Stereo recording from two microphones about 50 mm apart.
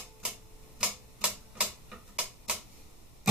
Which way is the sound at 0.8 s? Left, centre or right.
Right.